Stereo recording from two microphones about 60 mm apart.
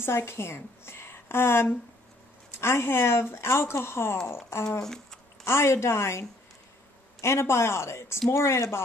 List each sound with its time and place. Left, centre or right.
0.0 s a woman's voice: left
4.8 s speech: centre
5.4 s speech: left